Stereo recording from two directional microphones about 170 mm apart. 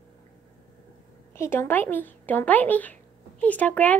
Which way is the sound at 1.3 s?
15° left (ahead or behind).